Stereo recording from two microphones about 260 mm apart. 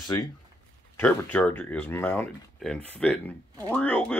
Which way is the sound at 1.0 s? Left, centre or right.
Centre.